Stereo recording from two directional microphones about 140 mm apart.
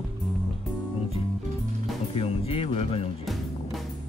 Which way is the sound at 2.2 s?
45° left (ahead or behind).